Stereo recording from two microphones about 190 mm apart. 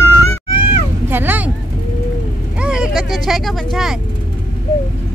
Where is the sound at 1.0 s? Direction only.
10° right (ahead or behind).